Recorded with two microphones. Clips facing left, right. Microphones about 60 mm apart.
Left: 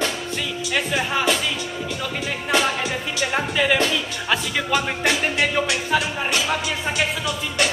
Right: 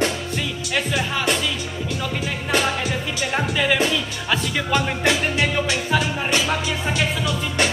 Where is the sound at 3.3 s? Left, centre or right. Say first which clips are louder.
Even; centre.